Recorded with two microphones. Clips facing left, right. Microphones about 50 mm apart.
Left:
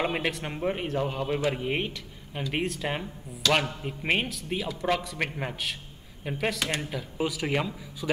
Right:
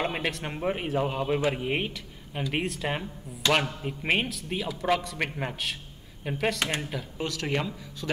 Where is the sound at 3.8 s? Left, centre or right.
Centre.